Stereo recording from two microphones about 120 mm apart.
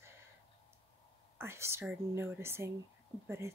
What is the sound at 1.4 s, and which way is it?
Speech, 20° right (ahead or behind).